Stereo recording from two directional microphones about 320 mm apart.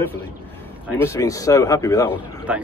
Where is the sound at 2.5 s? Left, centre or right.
Centre.